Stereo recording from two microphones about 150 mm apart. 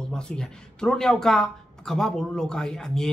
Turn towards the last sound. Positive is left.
turn(degrees=5)  # may be behind; listen again after turning